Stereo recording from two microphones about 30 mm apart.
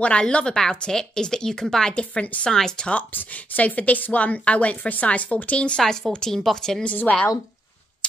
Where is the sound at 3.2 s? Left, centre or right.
Left.